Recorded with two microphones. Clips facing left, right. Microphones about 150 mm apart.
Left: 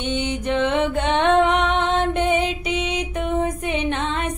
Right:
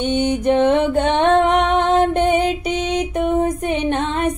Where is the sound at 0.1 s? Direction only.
40° right (ahead or behind).